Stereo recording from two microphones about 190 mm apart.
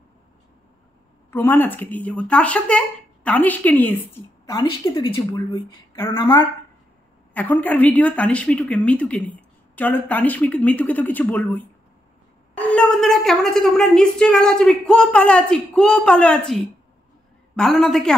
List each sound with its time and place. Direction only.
1.3 s a woman's voice: 10° left (ahead or behind)
4.6 s a woman's voice: 25° left (ahead or behind)
7.3 s a woman's voice: 10° left (ahead or behind)